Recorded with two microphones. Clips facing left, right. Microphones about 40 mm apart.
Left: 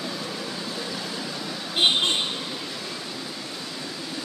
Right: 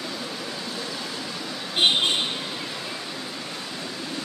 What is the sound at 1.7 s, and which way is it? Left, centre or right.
Vehicle, centre.